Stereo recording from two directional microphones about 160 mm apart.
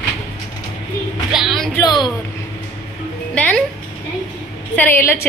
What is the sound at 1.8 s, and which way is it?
Speech, 25° left (ahead or behind).